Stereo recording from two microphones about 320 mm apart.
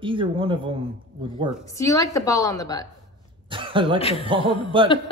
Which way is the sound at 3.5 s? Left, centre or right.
Centre.